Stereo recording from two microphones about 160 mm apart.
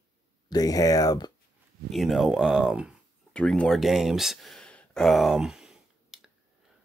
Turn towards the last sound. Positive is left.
turn(degrees=-5)  # may be behind; listen again after turning